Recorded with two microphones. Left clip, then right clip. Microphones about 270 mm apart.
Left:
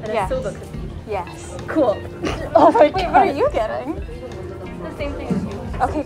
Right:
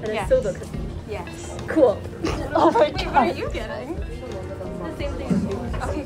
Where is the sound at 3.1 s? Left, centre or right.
Centre.